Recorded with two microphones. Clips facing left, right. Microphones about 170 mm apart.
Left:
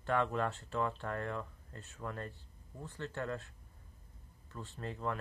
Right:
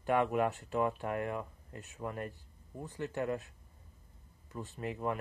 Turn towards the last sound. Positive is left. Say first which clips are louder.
# right 3 dB
turn(degrees=-15)  # may be behind; listen again after turning